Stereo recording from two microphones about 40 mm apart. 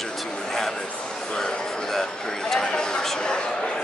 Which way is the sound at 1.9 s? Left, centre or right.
Centre.